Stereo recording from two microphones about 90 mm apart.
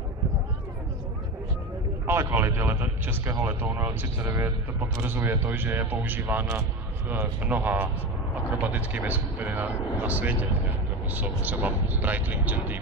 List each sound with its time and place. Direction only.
2.0 s speech: 25° right (ahead or behind)